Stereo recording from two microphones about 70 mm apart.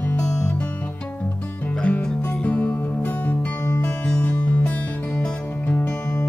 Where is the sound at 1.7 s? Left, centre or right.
Centre.